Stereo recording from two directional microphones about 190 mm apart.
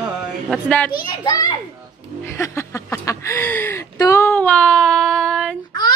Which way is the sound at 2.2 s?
15° left (ahead or behind).